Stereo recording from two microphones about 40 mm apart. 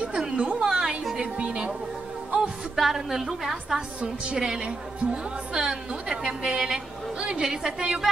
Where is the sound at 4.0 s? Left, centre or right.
Right.